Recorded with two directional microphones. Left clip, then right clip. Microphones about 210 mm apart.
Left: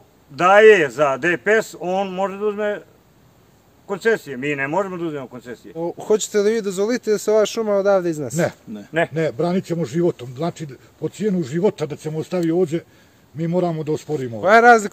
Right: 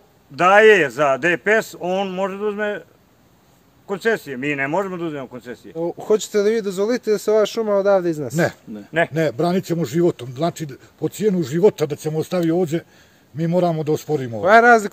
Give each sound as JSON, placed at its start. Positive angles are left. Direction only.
{"t": 0.4, "sound": "a man's voice", "side_deg": -5}
{"t": 3.8, "sound": "a man's voice", "side_deg": -5}
{"t": 5.8, "sound": "speech", "side_deg": 10}
{"t": 9.1, "sound": "a man's voice", "side_deg": -50}
{"t": 14.4, "sound": "speech", "side_deg": 10}